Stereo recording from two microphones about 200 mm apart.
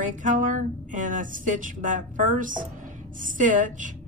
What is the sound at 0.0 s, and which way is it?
A woman's voice, 40° right (ahead or behind).